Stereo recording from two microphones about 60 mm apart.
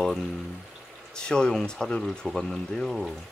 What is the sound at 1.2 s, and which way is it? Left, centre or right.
Speech, centre.